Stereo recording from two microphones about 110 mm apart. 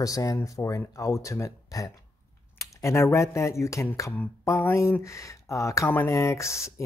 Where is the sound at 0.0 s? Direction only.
30° left (ahead or behind).